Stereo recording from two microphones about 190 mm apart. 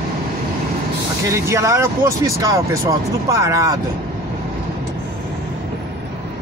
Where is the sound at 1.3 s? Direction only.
15° right (ahead or behind).